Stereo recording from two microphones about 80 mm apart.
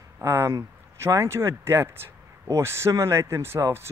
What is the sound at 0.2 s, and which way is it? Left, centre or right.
Speech, right.